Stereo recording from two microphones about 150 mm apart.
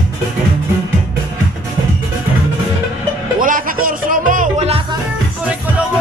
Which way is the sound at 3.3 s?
65° right (ahead or behind).